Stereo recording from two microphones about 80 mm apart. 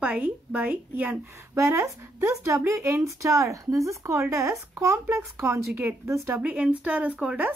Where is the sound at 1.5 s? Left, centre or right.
Right.